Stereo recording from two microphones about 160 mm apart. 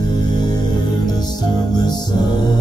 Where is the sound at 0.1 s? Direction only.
25° left (ahead or behind).